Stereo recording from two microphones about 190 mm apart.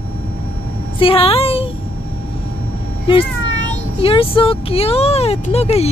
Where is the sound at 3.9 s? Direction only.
30° left (ahead or behind).